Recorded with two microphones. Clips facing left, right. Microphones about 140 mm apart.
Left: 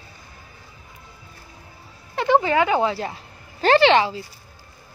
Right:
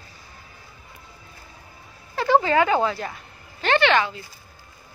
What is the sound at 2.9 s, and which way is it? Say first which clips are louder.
A woman's voice: left 3 dB; 30° left (ahead or behind).